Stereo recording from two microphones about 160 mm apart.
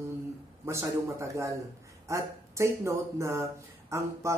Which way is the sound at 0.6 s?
15° right (ahead or behind).